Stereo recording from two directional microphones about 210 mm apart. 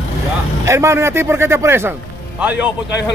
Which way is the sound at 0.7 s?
15° right (ahead or behind).